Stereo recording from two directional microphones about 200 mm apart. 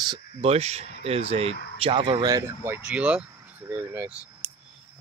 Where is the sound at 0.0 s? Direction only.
25° right (ahead or behind); by 4.1 s 10° right (ahead or behind).